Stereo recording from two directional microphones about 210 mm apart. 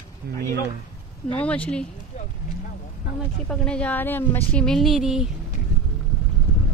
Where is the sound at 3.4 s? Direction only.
5° left (ahead or behind).